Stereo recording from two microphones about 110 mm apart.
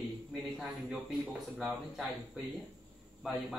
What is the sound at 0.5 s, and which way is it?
A man's voice, 5° right (ahead or behind).